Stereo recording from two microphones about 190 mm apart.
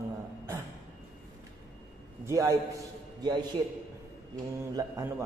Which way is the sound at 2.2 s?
15° right (ahead or behind).